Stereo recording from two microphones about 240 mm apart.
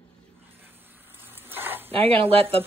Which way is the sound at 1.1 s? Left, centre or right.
Centre.